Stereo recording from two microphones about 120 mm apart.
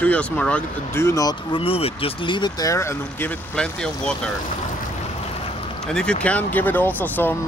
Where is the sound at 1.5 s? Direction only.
50° left (ahead or behind); by 3.3 s 20° left (ahead or behind).